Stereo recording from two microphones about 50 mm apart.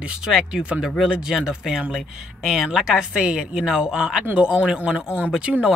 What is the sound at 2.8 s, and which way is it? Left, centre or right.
A man's voice, centre.